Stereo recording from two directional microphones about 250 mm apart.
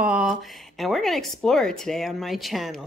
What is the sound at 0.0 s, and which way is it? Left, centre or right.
Speech, centre.